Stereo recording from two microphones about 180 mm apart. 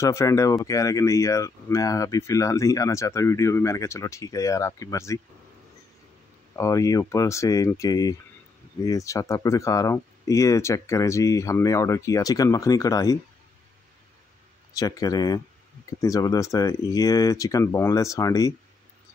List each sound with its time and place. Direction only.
0.0 s speech: 15° left (ahead or behind)
6.5 s speech: 15° left (ahead or behind)
14.7 s speech: 20° left (ahead or behind)